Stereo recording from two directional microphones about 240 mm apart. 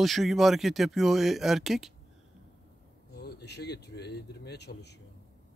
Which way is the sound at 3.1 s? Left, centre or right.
Left.